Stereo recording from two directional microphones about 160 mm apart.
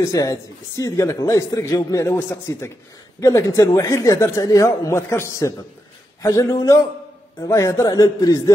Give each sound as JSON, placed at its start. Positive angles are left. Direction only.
{"t": 0.0, "sound": "speech", "side_deg": 20}
{"t": 2.1, "sound": "a man's voice", "side_deg": 10}